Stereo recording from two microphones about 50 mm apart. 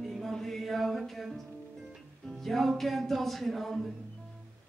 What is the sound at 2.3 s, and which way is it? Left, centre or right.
Speech, centre.